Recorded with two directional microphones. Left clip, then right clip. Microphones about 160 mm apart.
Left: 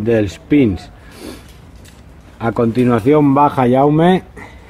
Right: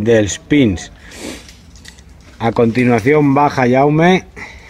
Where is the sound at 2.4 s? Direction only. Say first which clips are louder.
Right 2 dB; 15° right (ahead or behind).